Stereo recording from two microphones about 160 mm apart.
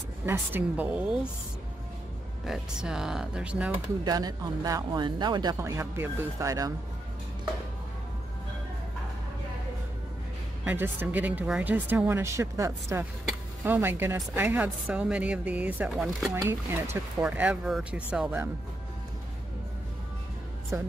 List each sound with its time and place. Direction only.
0.2 s speech: 10° right (ahead or behind)
2.4 s speech: 5° right (ahead or behind)
4.0 s speech: 25° right (ahead or behind)
10.6 s speech: 10° right (ahead or behind)
16.3 s speech: 15° right (ahead or behind)
20.7 s speech: 15° right (ahead or behind)